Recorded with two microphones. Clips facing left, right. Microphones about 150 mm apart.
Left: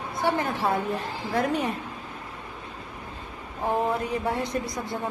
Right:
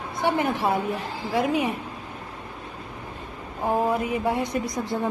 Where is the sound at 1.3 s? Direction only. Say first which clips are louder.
Right 2 dB; 5° right (ahead or behind).